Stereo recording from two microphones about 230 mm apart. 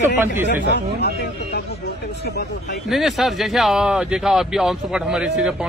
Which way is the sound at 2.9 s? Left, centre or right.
Centre.